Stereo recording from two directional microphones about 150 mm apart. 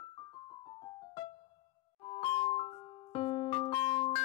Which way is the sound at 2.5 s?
40° left (ahead or behind).